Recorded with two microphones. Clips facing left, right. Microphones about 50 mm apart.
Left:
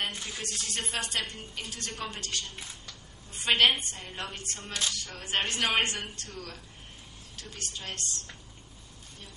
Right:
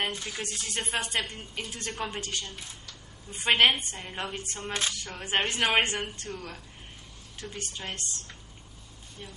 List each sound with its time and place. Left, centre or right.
0.0 s speech: centre
0.5 s music: centre
0.9 s a woman's voice: centre